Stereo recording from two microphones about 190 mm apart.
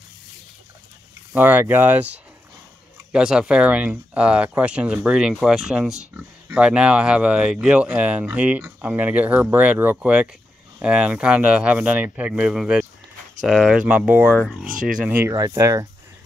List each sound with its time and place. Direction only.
1.3 s speech: 10° right (ahead or behind)
15.0 s speech: 10° right (ahead or behind)